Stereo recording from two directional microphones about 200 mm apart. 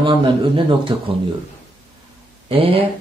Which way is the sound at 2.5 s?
30° right (ahead or behind).